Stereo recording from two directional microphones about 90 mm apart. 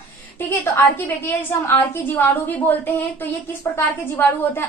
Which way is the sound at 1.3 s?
30° left (ahead or behind).